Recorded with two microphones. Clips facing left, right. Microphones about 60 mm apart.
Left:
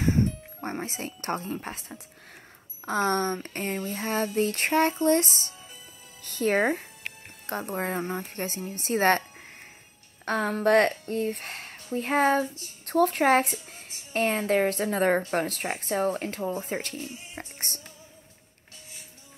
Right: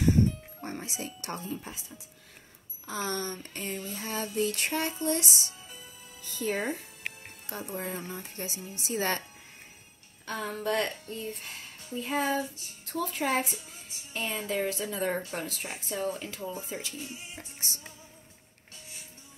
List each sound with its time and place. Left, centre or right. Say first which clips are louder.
0.0 s speech: even; left
6.2 s speech: left 7 dB; left
10.2 s speech: left 8 dB; left